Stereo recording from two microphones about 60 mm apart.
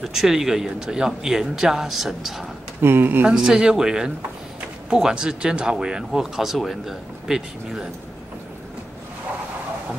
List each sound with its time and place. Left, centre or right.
0.0 s speech: centre
2.8 s speech: right
3.3 s speech: centre